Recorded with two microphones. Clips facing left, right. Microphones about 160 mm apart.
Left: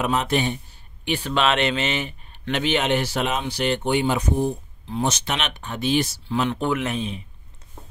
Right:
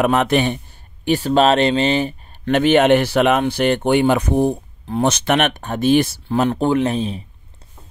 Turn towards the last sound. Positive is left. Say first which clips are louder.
# right 7 dB
turn(degrees=-35)  # may be behind; listen again after turning